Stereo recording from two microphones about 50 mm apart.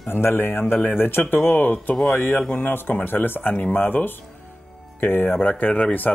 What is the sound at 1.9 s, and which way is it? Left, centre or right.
Speech, centre.